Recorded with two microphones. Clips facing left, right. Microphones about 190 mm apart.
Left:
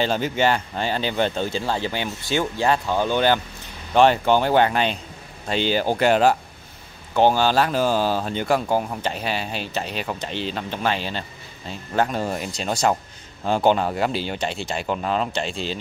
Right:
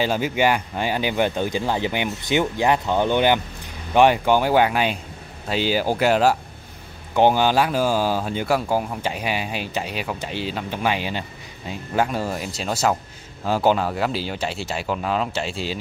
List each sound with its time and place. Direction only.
0.0 s speech: 10° right (ahead or behind)
7.2 s speech: 15° right (ahead or behind)